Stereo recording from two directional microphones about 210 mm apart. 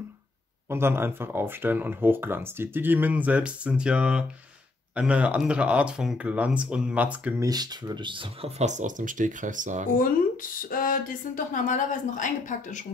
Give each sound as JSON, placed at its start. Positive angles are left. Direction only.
{"t": 0.7, "sound": "speech", "side_deg": -10}
{"t": 9.9, "sound": "speech", "side_deg": 40}